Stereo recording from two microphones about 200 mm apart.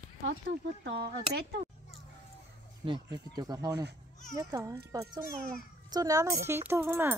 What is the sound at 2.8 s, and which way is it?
A child's voice, 20° right (ahead or behind).